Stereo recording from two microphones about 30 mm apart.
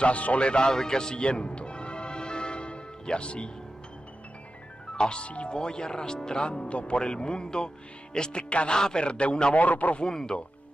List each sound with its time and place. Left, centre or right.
0.0 s a man's voice: left
0.7 s music: left
4.9 s a man's voice: left
5.6 s a man's voice: left
9.6 s a man's voice: left
10.0 s speech: left